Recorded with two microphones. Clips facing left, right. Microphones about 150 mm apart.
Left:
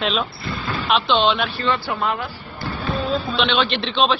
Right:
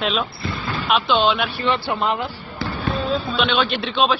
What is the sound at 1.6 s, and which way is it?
Speech, 20° right (ahead or behind).